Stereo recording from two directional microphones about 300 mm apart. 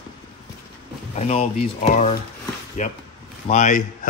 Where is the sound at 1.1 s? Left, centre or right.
Left.